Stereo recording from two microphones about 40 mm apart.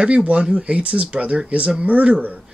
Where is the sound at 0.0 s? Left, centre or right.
Right.